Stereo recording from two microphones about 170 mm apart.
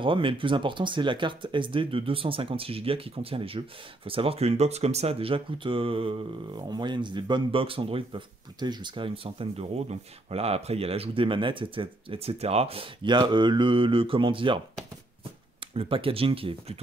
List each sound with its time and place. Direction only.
0.0 s speech: 30° right (ahead or behind)
15.7 s speech: 35° right (ahead or behind)